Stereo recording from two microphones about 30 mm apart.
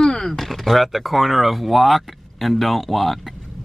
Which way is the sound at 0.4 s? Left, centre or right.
Centre.